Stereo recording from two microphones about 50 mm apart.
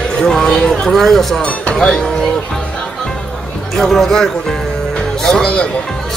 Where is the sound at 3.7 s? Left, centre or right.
Centre.